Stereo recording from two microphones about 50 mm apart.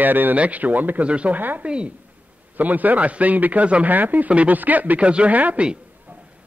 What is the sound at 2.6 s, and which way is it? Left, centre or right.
A man's voice, right.